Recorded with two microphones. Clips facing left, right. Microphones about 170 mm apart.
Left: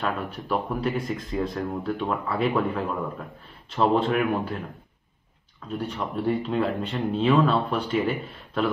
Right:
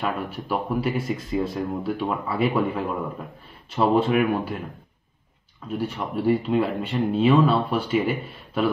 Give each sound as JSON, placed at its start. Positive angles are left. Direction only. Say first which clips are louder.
{"t": 0.0, "sound": "speech", "louder": "right 1 dB", "side_deg": -5}
{"t": 5.8, "sound": "speech", "louder": "right 2 dB", "side_deg": -5}